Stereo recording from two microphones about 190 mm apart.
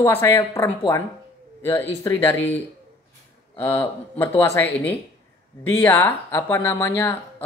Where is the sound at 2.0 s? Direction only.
10° left (ahead or behind).